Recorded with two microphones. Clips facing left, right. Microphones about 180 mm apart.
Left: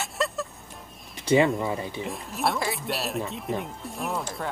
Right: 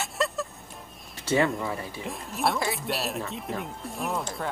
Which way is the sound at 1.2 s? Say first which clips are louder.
Left 4 dB; 15° left (ahead or behind).